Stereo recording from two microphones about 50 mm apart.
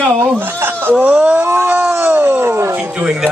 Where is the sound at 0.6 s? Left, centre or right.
Right.